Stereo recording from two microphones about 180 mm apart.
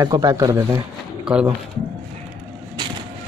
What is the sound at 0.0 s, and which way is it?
Speech, 20° right (ahead or behind).